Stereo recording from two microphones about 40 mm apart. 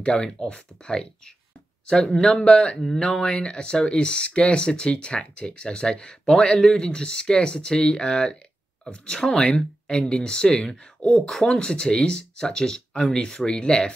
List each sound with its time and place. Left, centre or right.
0.0 s speech: centre
11.1 s speech: centre
11.4 s speech: left